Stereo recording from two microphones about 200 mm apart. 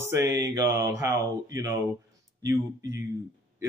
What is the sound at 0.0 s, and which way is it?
Speech, 15° right (ahead or behind).